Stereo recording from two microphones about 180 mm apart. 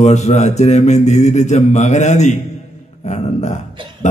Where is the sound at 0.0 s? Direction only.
40° left (ahead or behind).